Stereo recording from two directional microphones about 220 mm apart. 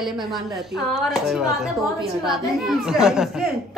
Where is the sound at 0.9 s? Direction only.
Centre (ahead or behind).